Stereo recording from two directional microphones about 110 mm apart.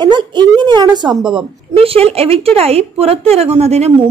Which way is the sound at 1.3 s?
60° right (ahead or behind).